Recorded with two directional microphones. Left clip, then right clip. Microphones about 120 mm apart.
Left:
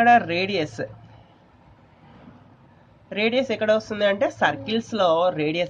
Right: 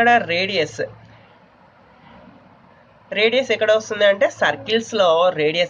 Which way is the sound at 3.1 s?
45° left (ahead or behind).